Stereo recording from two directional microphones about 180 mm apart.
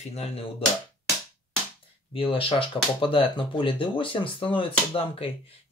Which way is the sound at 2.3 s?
30° left (ahead or behind).